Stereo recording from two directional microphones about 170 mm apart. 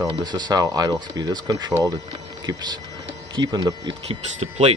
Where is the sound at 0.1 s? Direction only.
25° right (ahead or behind).